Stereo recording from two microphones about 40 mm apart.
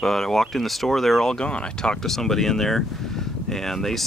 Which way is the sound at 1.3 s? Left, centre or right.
Left.